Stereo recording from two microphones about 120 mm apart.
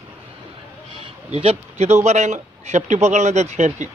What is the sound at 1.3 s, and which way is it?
Speech, 65° right (ahead or behind).